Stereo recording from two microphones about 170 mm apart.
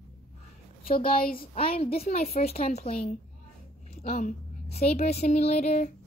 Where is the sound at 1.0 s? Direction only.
60° left (ahead or behind).